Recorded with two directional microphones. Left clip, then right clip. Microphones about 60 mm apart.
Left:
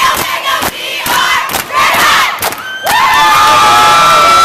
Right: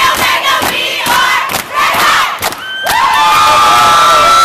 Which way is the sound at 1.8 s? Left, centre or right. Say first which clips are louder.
Left 2 dB; left.